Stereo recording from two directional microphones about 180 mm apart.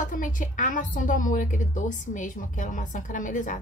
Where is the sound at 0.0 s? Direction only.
45° left (ahead or behind).